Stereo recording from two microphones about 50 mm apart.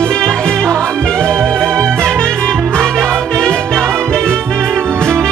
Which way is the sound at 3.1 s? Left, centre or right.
Centre.